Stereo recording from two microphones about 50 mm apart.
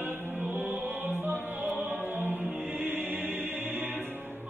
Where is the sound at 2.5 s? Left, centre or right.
Centre.